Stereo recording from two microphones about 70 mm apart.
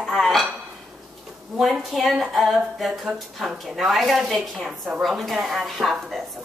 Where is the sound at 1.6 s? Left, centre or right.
Centre.